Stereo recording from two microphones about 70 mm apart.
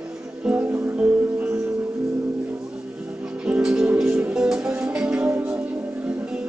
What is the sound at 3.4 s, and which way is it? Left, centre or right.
Music, centre.